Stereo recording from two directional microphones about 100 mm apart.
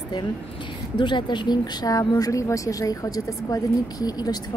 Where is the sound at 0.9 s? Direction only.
50° left (ahead or behind).